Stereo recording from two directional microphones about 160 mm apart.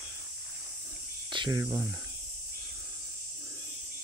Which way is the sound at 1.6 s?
15° right (ahead or behind).